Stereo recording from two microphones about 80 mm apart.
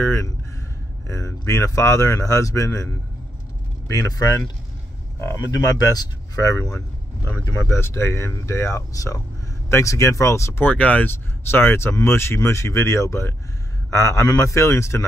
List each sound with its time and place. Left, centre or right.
0.0 s speech: left
5.9 s speech: left
10.6 s speech: left